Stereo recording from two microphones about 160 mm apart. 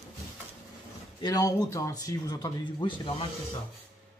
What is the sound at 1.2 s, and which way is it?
Speech, 20° left (ahead or behind).